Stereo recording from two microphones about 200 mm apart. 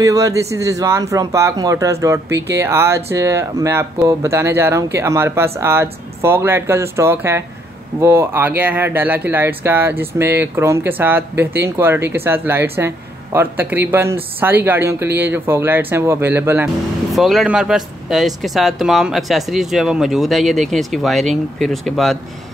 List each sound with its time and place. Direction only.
0.0 s speech: 15° right (ahead or behind); by 22.2 s centre (ahead or behind)